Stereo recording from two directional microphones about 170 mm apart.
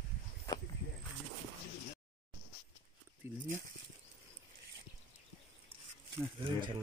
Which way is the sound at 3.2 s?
15° right (ahead or behind).